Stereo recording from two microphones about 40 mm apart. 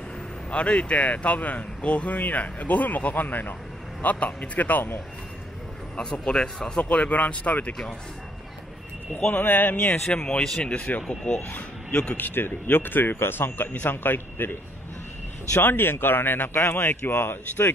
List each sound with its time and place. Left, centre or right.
0.5 s speech: left
2.1 s speech: left
3.3 s speech: left
4.0 s speech: left
5.9 s speech: left
6.8 s speech: left
9.3 s speech: left
10.1 s speech: left
10.9 s speech: left
11.9 s speech: left
12.2 s a man's voice: left
13.8 s a man's voice: left
15.6 s speech: left